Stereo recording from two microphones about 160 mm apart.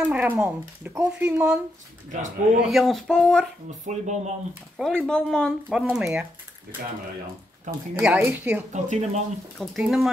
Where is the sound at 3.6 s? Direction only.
45° right (ahead or behind).